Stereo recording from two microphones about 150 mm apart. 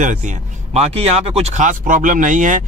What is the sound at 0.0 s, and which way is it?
Speech, 55° right (ahead or behind).